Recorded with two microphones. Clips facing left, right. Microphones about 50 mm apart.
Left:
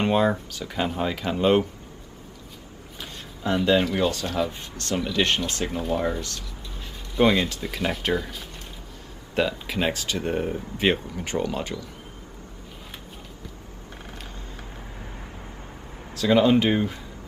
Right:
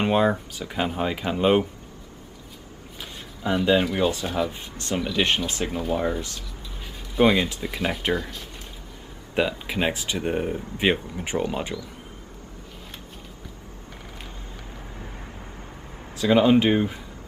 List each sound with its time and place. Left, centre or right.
0.0 s speech: centre
3.0 s a sound: centre
4.1 s speech: centre
4.9 s speech: centre
9.3 s speech: centre
16.3 s speech: centre